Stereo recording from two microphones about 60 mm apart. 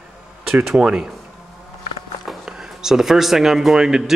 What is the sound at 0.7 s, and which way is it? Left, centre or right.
Speech, centre.